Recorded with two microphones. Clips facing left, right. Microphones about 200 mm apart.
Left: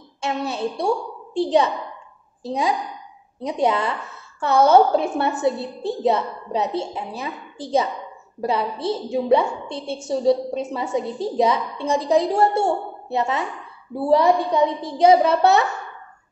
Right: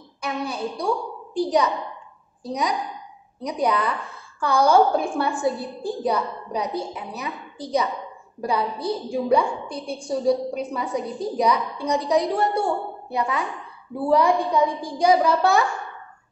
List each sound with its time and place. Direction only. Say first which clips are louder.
0.2 s a woman's voice: left 3 dB; 25° left (ahead or behind)